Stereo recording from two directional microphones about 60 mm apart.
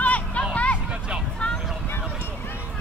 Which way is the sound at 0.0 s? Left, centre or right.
Left.